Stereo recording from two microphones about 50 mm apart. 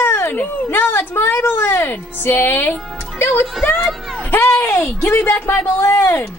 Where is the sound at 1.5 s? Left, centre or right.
Left.